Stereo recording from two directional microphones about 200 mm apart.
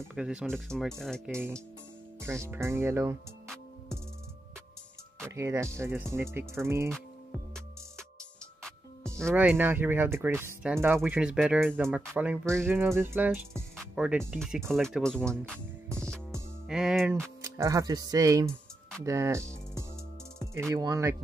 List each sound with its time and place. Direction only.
0.0 s speech: 5° right (ahead or behind)
2.2 s speech: 15° right (ahead or behind)
5.2 s speech: 15° right (ahead or behind)
9.1 s speech: 10° right (ahead or behind)
16.6 s speech: centre (ahead or behind)
17.1 s speech: 15° right (ahead or behind)
19.0 s music: 15° right (ahead or behind)
20.3 s speech: 15° right (ahead or behind)